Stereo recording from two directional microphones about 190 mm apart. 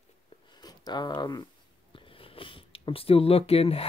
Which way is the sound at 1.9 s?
30° left (ahead or behind).